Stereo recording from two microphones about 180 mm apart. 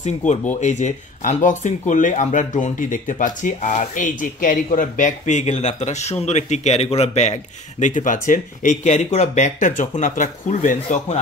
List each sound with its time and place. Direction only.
0.0 s speech: 40° left (ahead or behind)